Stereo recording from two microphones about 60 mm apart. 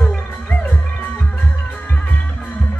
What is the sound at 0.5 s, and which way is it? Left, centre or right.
Music, left.